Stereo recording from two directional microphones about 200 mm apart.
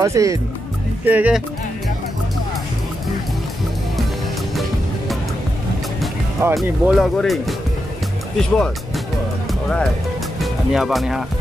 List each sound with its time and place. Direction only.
0.0 s speech: 15° right (ahead or behind)
6.5 s speech: centre (ahead or behind)
9.5 s music: 5° left (ahead or behind)
10.4 s speech: centre (ahead or behind)